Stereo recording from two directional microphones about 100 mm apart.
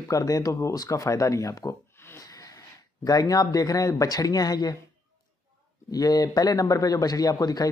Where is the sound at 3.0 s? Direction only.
40° left (ahead or behind).